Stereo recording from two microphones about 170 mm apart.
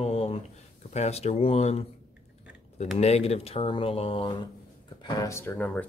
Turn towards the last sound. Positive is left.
turn(degrees=10)  # may be behind; listen again after turning